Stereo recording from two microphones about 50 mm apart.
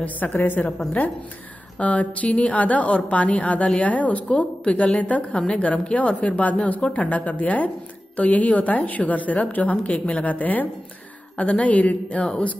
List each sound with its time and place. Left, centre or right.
0.0 s a woman's voice: left
1.8 s a woman's voice: left